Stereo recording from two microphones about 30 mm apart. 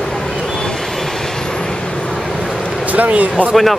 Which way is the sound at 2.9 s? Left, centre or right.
Right.